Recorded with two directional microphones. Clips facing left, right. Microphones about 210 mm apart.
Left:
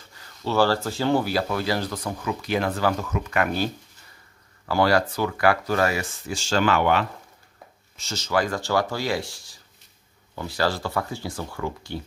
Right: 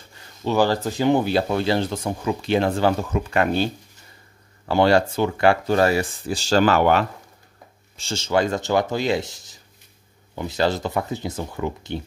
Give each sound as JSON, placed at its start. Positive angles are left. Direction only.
{"t": 0.1, "sound": "speech", "side_deg": -20}
{"t": 8.0, "sound": "speech", "side_deg": -25}